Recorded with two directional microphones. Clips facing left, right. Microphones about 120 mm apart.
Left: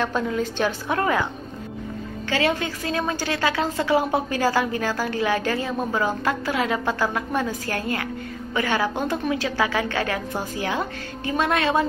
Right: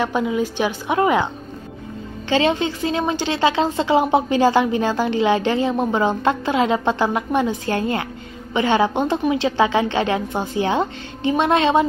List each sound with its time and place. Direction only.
0.0 s a woman's voice: 10° right (ahead or behind)